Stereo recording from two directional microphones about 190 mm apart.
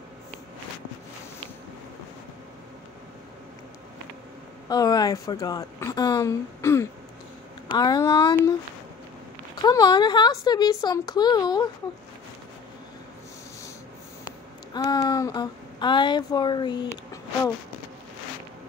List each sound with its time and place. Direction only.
4.6 s speech: 20° left (ahead or behind)
9.6 s speech: 20° left (ahead or behind)
14.2 s a sound: 20° left (ahead or behind)